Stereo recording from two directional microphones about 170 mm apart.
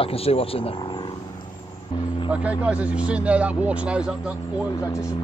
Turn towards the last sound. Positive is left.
turn(degrees=20)  # may be behind; listen again after turning